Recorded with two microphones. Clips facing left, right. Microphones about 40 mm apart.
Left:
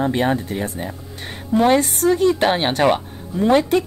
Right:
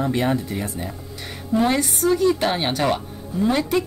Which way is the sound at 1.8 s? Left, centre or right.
Left.